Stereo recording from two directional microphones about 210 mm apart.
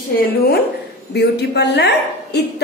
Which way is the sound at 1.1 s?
50° left (ahead or behind).